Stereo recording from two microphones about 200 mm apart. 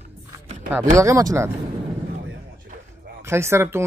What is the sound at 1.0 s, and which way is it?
Speech, 15° right (ahead or behind).